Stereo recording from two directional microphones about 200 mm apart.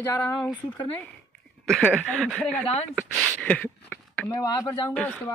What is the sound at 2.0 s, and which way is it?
Speech, centre (ahead or behind).